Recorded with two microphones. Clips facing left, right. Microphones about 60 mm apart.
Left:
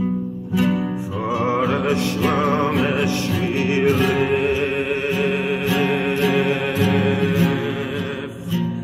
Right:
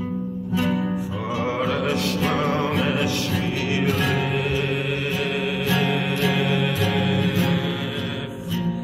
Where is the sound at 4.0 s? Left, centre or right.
Centre.